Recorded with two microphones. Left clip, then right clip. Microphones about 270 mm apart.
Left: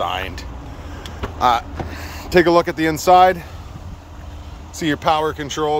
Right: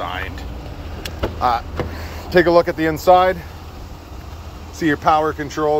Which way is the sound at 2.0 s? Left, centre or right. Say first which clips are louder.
Even; centre.